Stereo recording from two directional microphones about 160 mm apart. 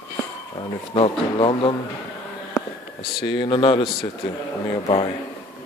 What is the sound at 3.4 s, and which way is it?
Speech, 30° left (ahead or behind).